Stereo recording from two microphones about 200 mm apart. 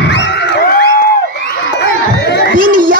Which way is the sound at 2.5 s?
45° right (ahead or behind).